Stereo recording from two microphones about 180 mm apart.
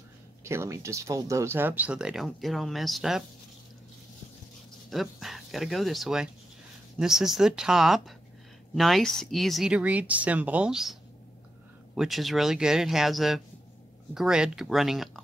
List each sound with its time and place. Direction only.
0.4 s speech: 15° right (ahead or behind)
4.8 s speech: centre (ahead or behind)